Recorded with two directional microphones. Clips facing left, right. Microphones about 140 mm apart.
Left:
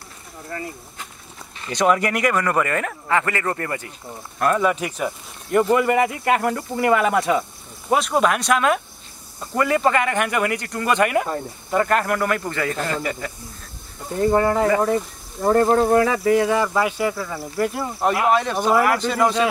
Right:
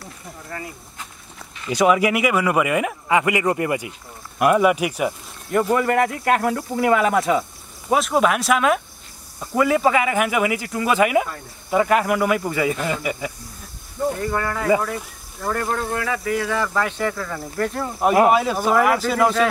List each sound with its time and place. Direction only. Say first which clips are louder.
1.7 s speech: right 2 dB; 5° right (ahead or behind)
5.5 s speech: left 2 dB; centre (ahead or behind)
14.2 s speech: left 6 dB; 25° left (ahead or behind); by 17.9 s 10° left (ahead or behind)
18.3 s speech: even; 5° right (ahead or behind)